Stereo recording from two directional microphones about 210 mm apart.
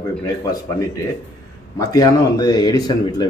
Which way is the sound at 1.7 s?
15° left (ahead or behind).